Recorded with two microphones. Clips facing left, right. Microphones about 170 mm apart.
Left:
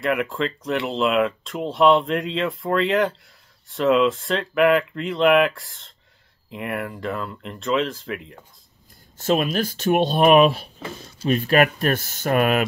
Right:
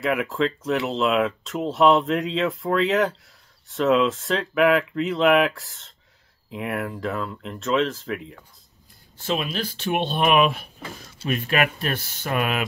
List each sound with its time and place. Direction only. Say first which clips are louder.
0.0 s speech: even; centre (ahead or behind)
9.2 s speech: left 6 dB; 45° left (ahead or behind)